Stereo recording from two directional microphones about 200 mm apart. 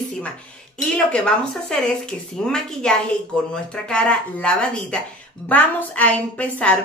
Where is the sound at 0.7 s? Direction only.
5° left (ahead or behind).